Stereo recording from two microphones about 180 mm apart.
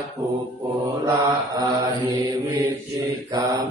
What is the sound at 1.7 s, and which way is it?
Mantra, 25° right (ahead or behind).